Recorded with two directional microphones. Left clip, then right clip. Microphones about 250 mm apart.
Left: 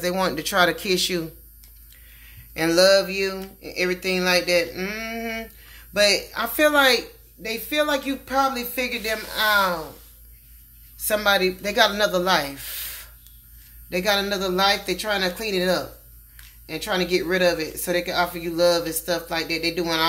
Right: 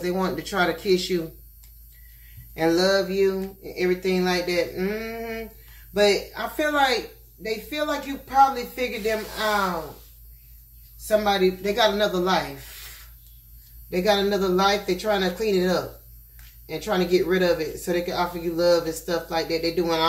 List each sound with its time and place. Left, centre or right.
0.0 s speech: left
2.5 s speech: left
11.1 s speech: left
13.8 s speech: left